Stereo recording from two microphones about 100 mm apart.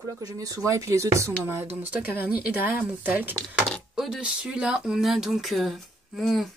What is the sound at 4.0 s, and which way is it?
Speech, 5° right (ahead or behind).